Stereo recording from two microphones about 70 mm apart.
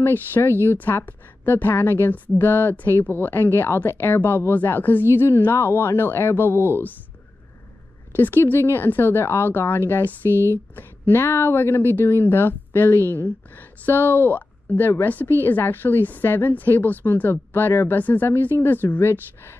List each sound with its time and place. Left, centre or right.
0.0 s speech: left
8.1 s a woman's voice: left